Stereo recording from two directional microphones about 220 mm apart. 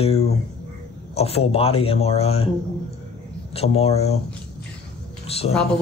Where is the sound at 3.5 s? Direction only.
25° left (ahead or behind).